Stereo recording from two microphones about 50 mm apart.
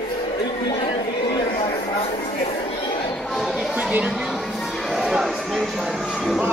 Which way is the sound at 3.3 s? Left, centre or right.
Centre.